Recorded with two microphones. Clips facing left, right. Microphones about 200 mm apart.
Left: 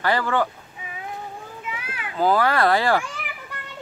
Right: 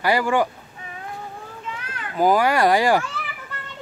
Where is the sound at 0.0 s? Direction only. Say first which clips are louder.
Right 2 dB; 10° right (ahead or behind).